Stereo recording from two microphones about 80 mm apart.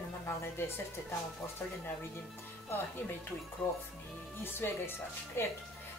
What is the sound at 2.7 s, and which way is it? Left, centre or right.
Speech, left.